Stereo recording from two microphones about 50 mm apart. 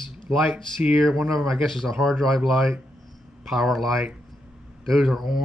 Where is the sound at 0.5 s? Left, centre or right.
Right.